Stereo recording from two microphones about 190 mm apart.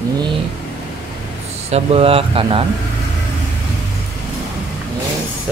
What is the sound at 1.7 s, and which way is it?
Speech, 30° right (ahead or behind).